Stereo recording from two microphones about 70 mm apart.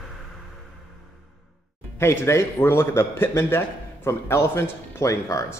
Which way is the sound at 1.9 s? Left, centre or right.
Left.